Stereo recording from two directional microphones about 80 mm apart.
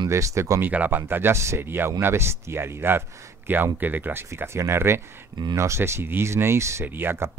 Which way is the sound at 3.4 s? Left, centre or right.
Right.